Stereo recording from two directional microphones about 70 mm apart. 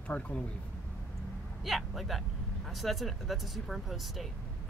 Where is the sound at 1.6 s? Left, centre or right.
Centre.